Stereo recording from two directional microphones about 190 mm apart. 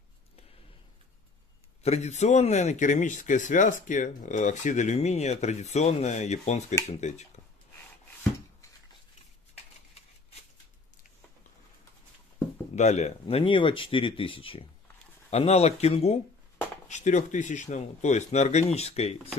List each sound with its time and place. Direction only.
1.8 s speech: 35° left (ahead or behind)
12.7 s speech: 35° left (ahead or behind)